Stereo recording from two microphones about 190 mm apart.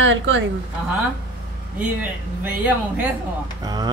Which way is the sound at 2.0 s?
10° right (ahead or behind).